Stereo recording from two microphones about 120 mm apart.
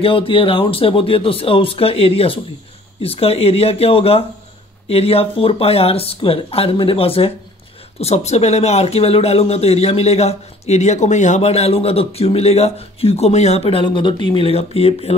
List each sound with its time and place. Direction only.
0.0 s speech: 50° left (ahead or behind)
8.0 s speech: 65° left (ahead or behind)